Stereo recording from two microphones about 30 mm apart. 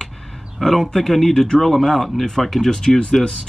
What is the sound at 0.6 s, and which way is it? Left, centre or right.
Speech, centre.